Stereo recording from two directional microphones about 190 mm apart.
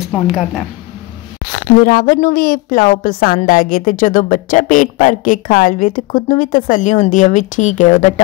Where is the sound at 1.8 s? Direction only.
50° left (ahead or behind).